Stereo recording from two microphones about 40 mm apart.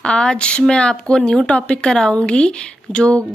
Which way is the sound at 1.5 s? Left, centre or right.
Left.